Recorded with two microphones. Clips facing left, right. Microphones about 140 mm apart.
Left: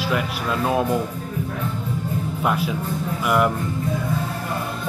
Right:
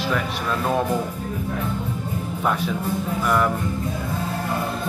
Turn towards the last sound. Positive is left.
turn(degrees=10)  # may be behind; listen again after turning